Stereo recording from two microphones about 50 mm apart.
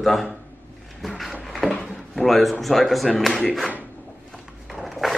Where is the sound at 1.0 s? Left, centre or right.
Centre.